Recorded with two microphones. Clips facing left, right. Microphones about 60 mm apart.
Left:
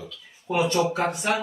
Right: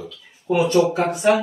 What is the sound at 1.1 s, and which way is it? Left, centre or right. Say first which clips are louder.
Speech: right 8 dB; centre.